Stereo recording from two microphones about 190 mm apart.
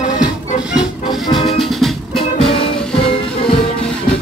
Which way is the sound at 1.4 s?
Centre (ahead or behind).